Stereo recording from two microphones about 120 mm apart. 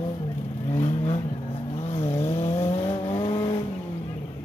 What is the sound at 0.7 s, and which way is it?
Vehicle, 65° left (ahead or behind).